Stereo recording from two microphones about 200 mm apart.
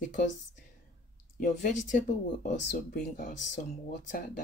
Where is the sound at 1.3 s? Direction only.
40° left (ahead or behind).